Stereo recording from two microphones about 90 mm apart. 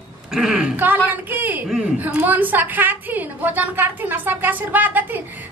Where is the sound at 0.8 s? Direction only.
20° right (ahead or behind).